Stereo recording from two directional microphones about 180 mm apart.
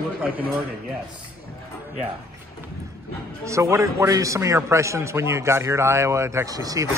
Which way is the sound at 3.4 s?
15° right (ahead or behind).